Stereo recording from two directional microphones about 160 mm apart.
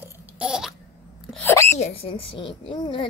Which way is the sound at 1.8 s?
35° left (ahead or behind).